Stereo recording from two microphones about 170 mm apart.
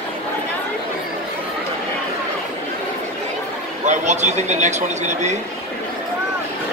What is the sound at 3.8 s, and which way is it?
Speech, 45° right (ahead or behind).